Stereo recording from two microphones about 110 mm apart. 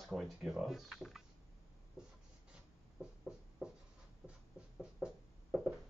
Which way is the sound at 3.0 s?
5° right (ahead or behind).